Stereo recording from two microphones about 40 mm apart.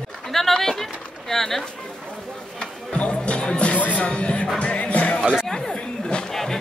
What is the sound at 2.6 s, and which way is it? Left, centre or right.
Music, left.